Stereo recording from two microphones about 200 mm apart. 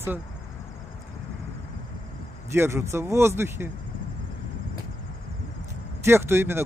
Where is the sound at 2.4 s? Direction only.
15° right (ahead or behind).